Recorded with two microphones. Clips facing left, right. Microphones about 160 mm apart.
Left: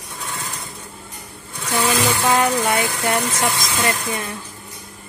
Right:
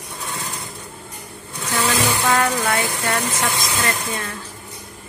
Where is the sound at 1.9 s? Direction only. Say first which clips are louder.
Left 1 dB; 15° left (ahead or behind).